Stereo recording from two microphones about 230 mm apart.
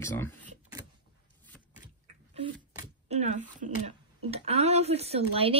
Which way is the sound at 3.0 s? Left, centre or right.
Right.